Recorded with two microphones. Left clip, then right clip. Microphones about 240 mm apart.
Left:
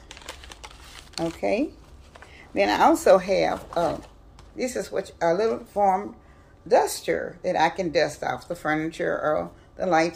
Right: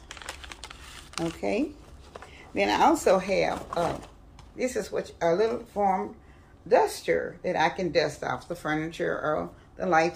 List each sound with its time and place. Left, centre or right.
1.2 s speech: centre